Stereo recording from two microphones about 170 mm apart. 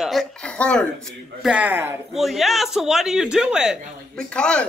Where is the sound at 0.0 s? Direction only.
Centre (ahead or behind).